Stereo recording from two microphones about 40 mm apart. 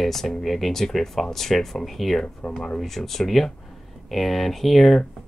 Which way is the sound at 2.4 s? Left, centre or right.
Centre.